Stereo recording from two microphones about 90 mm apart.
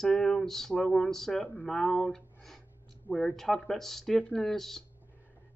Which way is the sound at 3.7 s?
5° left (ahead or behind).